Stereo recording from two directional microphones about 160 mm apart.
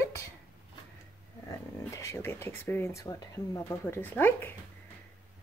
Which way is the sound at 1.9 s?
15° left (ahead or behind).